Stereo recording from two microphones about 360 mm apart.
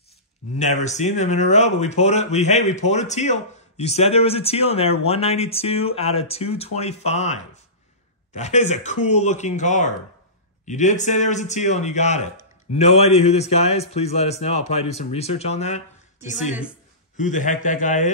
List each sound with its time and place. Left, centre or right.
0.6 s a man's voice: centre
17.2 s a man's voice: left